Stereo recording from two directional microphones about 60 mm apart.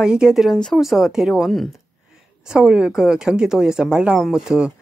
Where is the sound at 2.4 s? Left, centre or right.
Centre.